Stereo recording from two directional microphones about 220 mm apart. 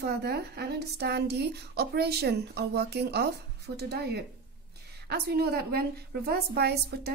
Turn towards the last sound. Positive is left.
turn(degrees=-50)  # may be behind; listen again after turning